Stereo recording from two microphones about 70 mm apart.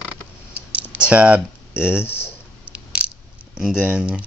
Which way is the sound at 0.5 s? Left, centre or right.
Centre.